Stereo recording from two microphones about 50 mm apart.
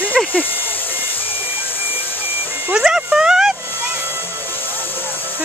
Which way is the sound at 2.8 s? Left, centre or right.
Centre.